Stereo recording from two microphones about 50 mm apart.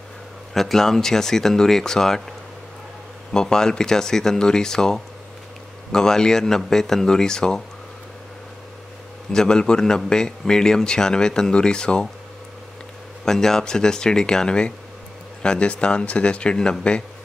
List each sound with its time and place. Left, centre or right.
0.6 s a man's voice: centre
3.3 s a man's voice: centre
9.3 s a man's voice: centre
13.2 s a man's voice: centre